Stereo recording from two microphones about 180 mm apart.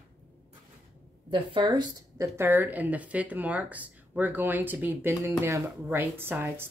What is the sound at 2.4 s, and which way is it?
Speech, 10° right (ahead or behind).